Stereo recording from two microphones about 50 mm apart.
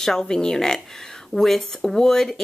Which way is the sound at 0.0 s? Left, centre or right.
Centre.